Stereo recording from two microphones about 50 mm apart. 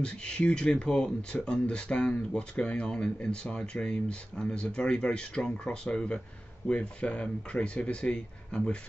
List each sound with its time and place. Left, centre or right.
0.0 s speech: centre